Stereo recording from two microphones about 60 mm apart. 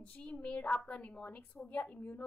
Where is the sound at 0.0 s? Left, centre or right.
Left.